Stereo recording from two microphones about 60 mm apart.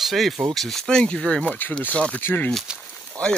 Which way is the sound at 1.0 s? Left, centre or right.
Centre.